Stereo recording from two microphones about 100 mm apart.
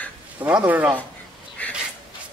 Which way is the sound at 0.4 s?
15° right (ahead or behind).